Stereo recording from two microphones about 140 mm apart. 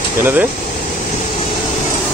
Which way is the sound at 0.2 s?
15° right (ahead or behind).